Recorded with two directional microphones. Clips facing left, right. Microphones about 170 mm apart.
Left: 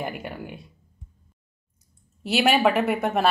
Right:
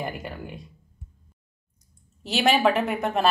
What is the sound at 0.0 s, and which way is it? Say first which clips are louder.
Speech: left 1 dB; centre (ahead or behind).